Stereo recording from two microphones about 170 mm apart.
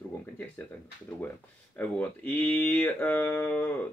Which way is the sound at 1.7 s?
10° left (ahead or behind).